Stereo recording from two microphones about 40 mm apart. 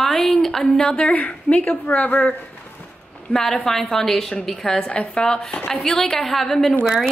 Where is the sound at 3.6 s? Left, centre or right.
Centre.